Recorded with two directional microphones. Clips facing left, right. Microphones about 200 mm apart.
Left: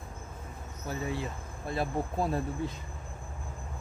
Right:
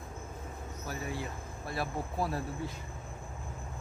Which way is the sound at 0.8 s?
25° left (ahead or behind).